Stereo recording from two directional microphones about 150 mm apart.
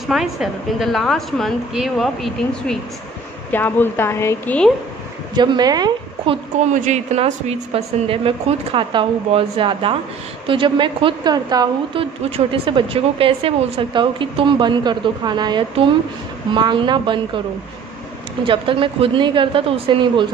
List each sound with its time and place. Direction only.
0.0 s a woman's voice: centre (ahead or behind)
3.5 s speech: 10° left (ahead or behind)
5.3 s a woman's voice: 30° right (ahead or behind)
6.7 s a woman's voice: 55° right (ahead or behind); by 17.4 s 30° right (ahead or behind)
18.4 s a woman's voice: 35° right (ahead or behind)